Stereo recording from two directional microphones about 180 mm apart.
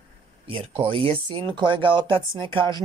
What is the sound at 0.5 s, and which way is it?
Speech, 30° right (ahead or behind).